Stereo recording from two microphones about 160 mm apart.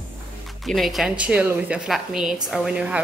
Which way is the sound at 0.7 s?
Centre (ahead or behind).